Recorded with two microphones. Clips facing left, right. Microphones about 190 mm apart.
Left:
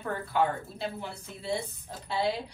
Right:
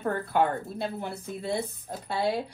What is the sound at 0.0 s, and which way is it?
Speech, 55° right (ahead or behind).